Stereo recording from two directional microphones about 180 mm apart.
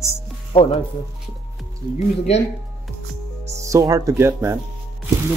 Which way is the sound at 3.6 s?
20° right (ahead or behind).